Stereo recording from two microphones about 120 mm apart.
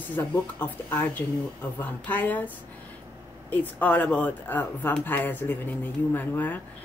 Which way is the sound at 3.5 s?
15° left (ahead or behind).